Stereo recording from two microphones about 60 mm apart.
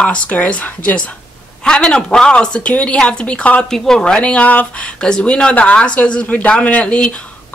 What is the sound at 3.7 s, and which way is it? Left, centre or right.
A woman's voice, centre.